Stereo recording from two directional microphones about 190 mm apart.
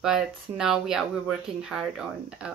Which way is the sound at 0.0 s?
5° right (ahead or behind).